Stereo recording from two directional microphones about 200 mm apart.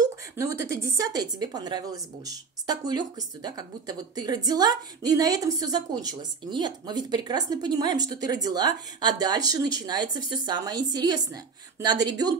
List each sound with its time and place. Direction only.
0.0 s a woman's voice: 15° right (ahead or behind)